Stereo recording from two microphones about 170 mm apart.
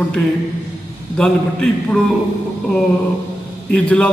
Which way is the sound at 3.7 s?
5° left (ahead or behind).